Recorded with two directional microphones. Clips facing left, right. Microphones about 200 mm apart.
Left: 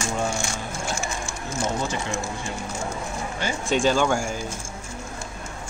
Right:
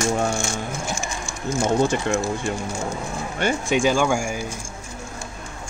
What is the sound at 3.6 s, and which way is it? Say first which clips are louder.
Speech: even; 10° right (ahead or behind).